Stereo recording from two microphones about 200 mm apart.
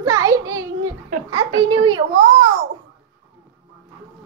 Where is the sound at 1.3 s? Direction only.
20° right (ahead or behind).